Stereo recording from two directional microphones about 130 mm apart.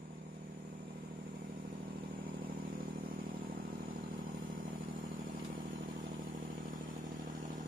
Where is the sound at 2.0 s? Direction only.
90° right.